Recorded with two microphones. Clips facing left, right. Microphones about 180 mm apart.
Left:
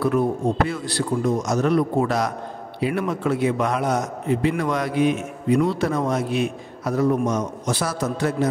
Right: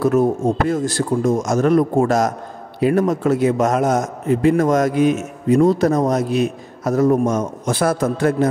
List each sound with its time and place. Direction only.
0.0 s a man's voice: 45° right (ahead or behind)